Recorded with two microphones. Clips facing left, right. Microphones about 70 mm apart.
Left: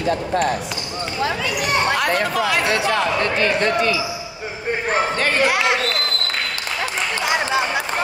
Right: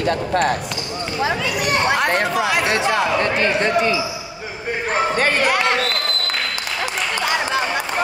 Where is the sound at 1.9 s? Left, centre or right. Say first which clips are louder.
Right 1 dB; right.